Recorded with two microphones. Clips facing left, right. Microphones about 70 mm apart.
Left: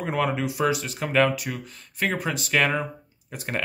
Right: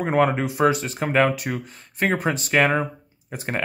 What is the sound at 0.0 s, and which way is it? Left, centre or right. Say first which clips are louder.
Speech: right 5 dB; right.